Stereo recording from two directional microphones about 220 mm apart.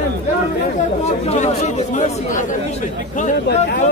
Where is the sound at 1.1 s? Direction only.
30° left (ahead or behind).